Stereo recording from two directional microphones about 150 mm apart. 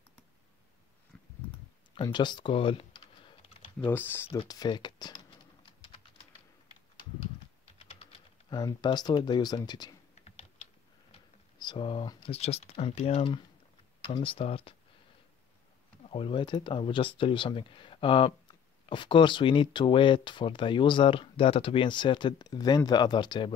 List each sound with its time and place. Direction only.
1.1 s a sound: 5° left (ahead or behind)
2.1 s typing: 30° left (ahead or behind)
4.5 s speech: 30° left (ahead or behind)
7.0 s typing: 40° left (ahead or behind)
8.5 s speech: 25° left (ahead or behind)
10.2 s typing: 40° left (ahead or behind)
11.5 s speech: 30° left (ahead or behind)
16.1 s speech: 35° left (ahead or behind)